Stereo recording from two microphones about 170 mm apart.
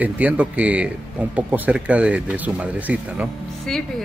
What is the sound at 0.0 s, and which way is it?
Speech, 10° right (ahead or behind).